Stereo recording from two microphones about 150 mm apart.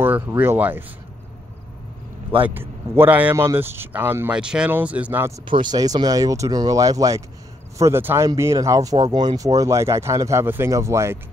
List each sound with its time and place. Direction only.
0.0 s speech: 15° right (ahead or behind)
2.4 s speech: 15° right (ahead or behind)
5.5 s speech: 30° right (ahead or behind)